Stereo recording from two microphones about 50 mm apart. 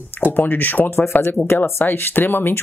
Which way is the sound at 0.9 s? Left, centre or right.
Left.